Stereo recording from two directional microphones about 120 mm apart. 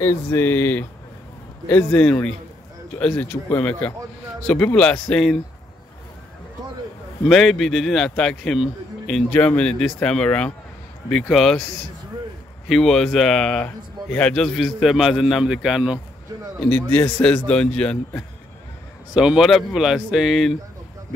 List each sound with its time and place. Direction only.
0.0 s speech: 20° left (ahead or behind); by 5.4 s 5° left (ahead or behind)
7.2 s a man's voice: centre (ahead or behind)
9.3 s a man's voice: 10° left (ahead or behind)
12.6 s a man's voice: 5° left (ahead or behind)
16.6 s speech: 10° left (ahead or behind)
19.1 s a man's voice: 5° right (ahead or behind)